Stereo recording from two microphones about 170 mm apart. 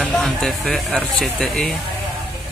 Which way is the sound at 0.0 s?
5° left (ahead or behind).